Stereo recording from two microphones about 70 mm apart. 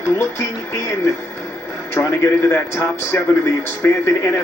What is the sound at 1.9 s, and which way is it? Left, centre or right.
Speech, left.